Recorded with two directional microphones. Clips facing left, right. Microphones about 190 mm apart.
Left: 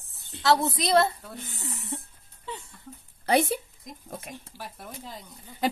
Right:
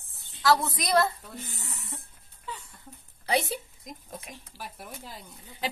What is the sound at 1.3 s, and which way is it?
Speech, centre (ahead or behind).